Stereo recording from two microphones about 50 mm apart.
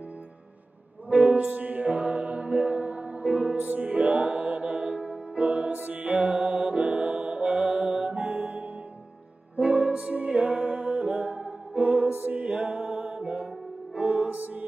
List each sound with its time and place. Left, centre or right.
1.1 s music: right